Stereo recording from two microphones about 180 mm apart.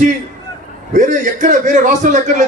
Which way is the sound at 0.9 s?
45° right (ahead or behind).